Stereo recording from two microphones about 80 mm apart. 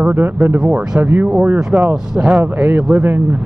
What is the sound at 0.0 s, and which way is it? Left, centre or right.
Speech, right.